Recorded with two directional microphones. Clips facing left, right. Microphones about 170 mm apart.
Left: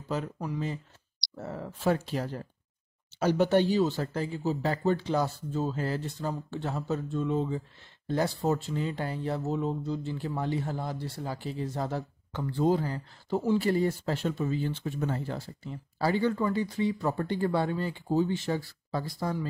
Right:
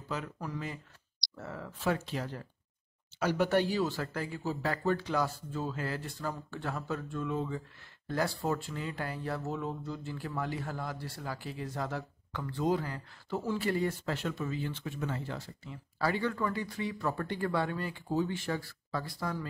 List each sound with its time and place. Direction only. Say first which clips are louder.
0.4 s speech: left 5 dB; 25° left (ahead or behind); by 2.4 s 40° left (ahead or behind)
3.2 s speech: left 4 dB; 25° left (ahead or behind)